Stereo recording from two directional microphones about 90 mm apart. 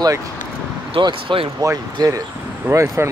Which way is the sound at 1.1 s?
70° right (ahead or behind).